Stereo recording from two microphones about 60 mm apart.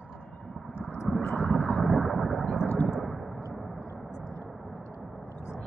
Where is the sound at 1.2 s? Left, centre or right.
Left.